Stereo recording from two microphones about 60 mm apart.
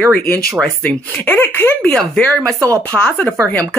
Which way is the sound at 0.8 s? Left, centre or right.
Left.